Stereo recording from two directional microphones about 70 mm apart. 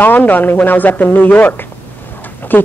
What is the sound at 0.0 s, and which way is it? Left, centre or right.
Speech, left.